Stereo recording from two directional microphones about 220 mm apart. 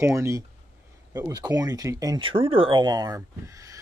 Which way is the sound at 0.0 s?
15° right (ahead or behind).